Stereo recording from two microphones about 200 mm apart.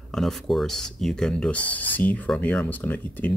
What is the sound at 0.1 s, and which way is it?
Speech, centre (ahead or behind).